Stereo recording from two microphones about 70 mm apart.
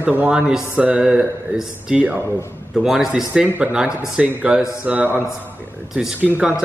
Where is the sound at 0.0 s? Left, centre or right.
Right.